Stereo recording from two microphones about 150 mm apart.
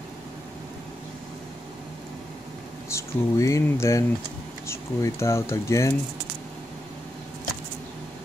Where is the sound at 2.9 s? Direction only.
20° left (ahead or behind).